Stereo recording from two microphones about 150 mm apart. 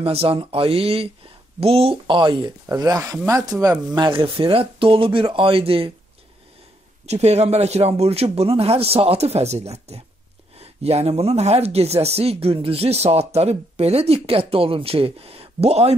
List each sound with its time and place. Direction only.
0.0 s speech: 40° right (ahead or behind)
7.1 s speech: 45° right (ahead or behind)